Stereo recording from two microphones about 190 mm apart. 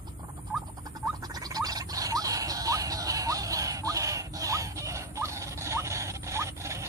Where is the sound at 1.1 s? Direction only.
20° right (ahead or behind).